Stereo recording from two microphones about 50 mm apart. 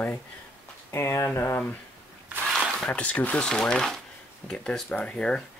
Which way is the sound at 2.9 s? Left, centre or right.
Left.